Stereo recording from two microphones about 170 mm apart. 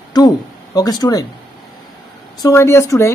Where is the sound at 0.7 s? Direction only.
20° left (ahead or behind).